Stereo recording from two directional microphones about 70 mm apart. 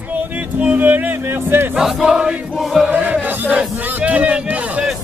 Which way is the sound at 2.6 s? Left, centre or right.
Centre.